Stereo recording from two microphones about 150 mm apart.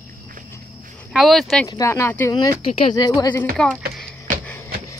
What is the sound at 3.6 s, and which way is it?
Speech, 5° left (ahead or behind).